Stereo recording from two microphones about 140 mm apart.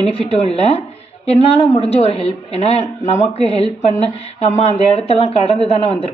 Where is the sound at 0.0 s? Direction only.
45° left (ahead or behind).